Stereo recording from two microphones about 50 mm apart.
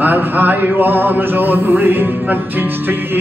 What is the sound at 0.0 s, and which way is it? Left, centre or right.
Music, right.